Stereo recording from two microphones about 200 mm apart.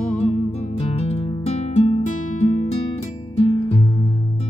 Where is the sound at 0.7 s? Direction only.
30° left (ahead or behind).